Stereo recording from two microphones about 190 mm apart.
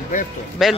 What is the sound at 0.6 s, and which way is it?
Speech, centre (ahead or behind).